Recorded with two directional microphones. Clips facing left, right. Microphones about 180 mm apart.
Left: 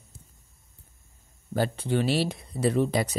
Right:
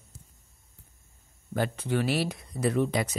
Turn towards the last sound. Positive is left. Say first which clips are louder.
# left 2 dB
turn(degrees=35)  # may be behind; listen again after turning